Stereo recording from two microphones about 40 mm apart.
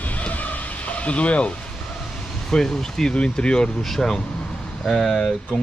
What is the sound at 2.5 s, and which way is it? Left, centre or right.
Speech, centre.